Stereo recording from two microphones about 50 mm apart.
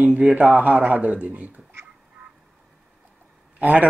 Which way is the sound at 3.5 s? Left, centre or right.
Right.